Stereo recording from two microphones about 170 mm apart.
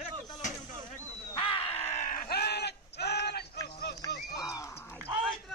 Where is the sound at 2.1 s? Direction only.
70° left (ahead or behind).